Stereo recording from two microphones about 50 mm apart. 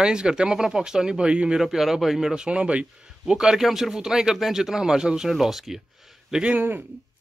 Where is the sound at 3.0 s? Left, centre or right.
Centre.